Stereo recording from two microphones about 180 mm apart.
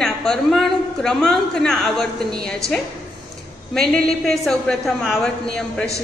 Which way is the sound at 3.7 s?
5° left (ahead or behind).